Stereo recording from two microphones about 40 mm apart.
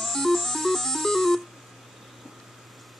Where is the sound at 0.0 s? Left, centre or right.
Centre.